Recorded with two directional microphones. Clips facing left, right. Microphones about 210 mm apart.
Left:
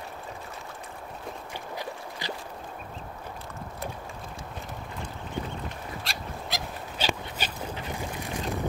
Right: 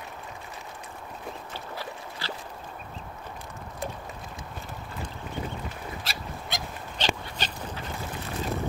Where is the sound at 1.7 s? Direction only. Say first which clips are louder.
Left 3 dB; 15° left (ahead or behind).